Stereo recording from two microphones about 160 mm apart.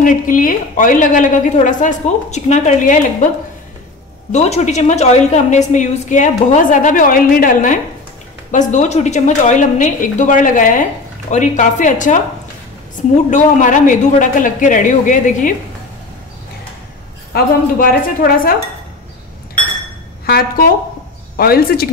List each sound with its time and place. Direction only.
0.0 s a woman's voice: 55° left (ahead or behind)
4.3 s a woman's voice: 45° left (ahead or behind)
13.3 s a woman's voice: 50° left (ahead or behind)
17.3 s speech: 70° left (ahead or behind)
20.2 s speech: 70° left (ahead or behind)